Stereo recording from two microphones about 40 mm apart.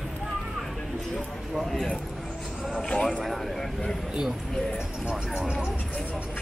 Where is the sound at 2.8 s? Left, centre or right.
Centre.